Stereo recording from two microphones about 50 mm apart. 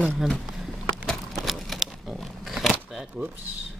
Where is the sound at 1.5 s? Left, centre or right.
Centre.